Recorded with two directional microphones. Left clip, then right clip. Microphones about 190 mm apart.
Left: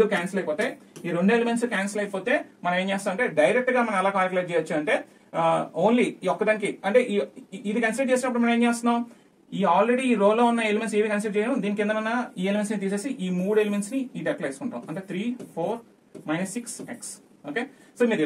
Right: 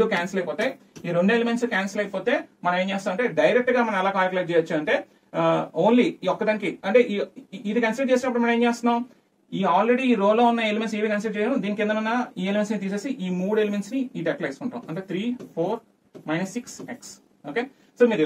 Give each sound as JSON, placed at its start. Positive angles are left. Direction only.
{"t": 0.0, "sound": "speech", "side_deg": 15}